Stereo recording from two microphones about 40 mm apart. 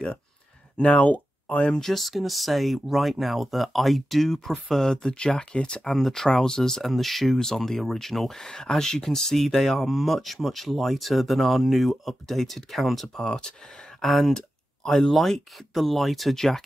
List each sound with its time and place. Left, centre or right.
1.0 s speech: left
1.7 s speech: centre
5.4 s speech: left
5.9 s speech: centre
6.2 s speech: centre